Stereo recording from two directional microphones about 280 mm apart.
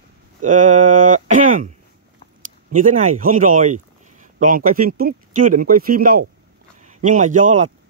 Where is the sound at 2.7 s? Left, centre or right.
Right.